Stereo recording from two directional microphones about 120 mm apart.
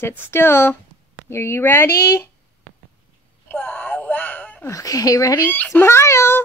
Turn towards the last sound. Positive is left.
turn(degrees=20)  # may be behind; listen again after turning